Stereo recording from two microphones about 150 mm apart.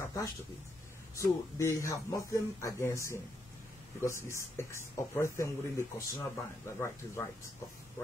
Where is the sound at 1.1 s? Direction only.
20° left (ahead or behind).